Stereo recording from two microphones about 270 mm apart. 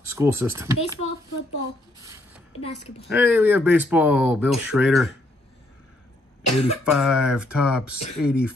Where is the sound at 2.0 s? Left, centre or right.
Centre.